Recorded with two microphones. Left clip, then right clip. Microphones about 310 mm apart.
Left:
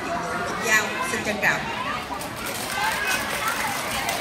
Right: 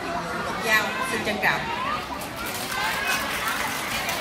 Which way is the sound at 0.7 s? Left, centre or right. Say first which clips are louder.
Even; centre.